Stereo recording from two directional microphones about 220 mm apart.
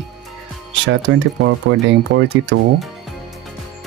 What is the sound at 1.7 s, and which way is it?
Speech, 60° right (ahead or behind).